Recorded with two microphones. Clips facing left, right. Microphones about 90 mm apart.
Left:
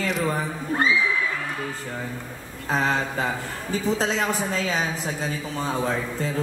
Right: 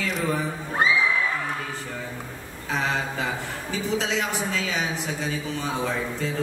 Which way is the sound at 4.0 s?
40° left (ahead or behind).